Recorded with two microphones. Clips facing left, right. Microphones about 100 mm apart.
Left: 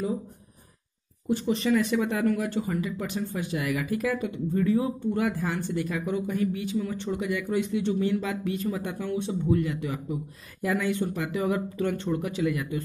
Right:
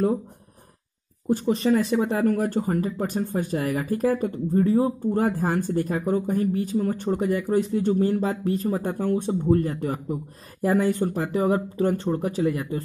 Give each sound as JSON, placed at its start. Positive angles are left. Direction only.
{"t": 1.3, "sound": "speech", "side_deg": -40}
{"t": 2.3, "sound": "speech", "side_deg": -45}